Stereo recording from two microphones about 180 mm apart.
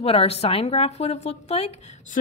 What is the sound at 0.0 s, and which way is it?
A woman's voice, 35° left (ahead or behind).